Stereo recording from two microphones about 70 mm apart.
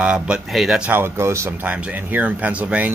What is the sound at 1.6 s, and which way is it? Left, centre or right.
Speech, right.